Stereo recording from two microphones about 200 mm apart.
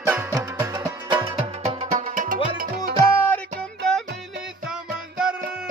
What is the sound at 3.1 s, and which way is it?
Music, 10° left (ahead or behind).